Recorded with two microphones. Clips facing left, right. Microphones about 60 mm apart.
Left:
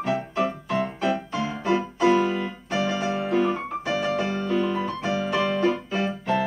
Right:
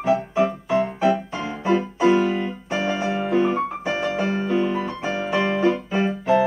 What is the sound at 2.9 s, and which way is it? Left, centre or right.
Music, centre.